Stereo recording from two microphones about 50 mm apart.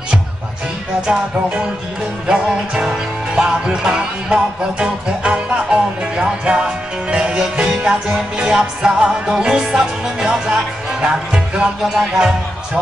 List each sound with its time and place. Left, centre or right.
1.0 s music: right